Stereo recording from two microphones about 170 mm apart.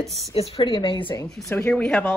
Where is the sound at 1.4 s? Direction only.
15° left (ahead or behind).